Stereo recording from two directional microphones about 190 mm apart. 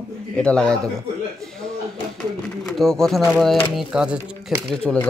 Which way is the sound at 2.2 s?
5° left (ahead or behind).